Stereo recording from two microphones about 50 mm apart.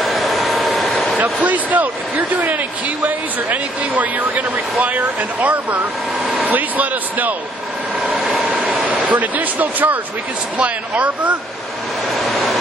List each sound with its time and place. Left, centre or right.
0.0 s vehicle: centre
1.4 s speech: right
8.5 s vehicle: right
10.6 s speech: right
12.2 s vehicle: centre